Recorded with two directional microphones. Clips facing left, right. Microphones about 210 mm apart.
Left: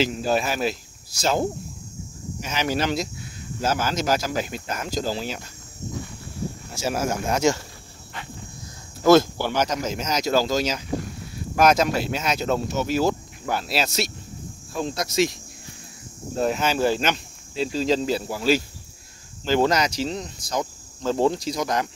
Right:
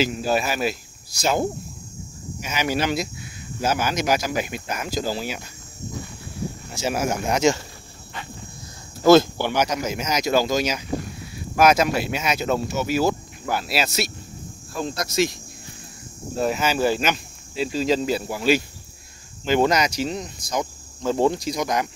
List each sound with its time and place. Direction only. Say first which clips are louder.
0.0 s speech: even; 5° right (ahead or behind)
6.7 s speech: right 1 dB; 20° right (ahead or behind)
9.0 s speech: right 2 dB; 30° right (ahead or behind)
9.6 s speech: right 1 dB; 10° right (ahead or behind)
16.3 s speech: even; 5° right (ahead or behind)